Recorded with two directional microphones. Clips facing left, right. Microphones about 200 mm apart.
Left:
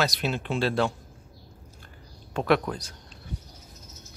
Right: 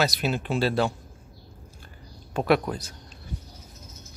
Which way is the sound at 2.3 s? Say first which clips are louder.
Right 1 dB; 10° right (ahead or behind).